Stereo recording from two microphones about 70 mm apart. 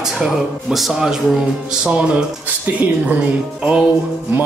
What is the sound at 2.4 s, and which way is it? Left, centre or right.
Music, right.